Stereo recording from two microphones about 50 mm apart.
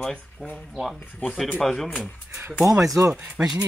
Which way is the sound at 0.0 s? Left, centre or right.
Centre.